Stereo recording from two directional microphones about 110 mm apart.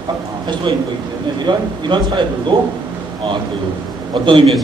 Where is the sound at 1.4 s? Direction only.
45° right (ahead or behind).